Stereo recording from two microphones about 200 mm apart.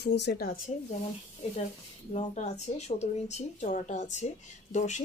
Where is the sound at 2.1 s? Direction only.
35° left (ahead or behind).